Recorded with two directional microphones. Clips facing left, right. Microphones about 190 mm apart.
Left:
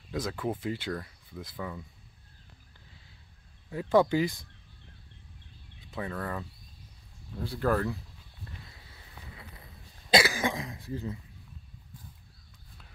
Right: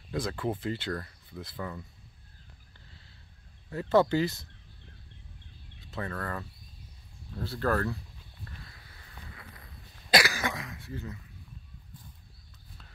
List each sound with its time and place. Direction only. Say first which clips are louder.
0.1 s speech: right 1 dB; 5° left (ahead or behind)
3.7 s speech: even; 10° left (ahead or behind)
5.9 s speech: left 1 dB; 10° left (ahead or behind)
8.5 s a sound: left 2 dB; 20° left (ahead or behind)
10.1 s cough: left 2 dB; 25° left (ahead or behind)